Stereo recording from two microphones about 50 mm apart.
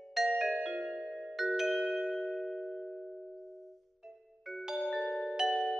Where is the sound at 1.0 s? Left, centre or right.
Centre.